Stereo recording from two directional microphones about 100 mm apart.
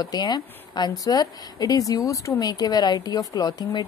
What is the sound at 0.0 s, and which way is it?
A woman's voice, 45° left (ahead or behind).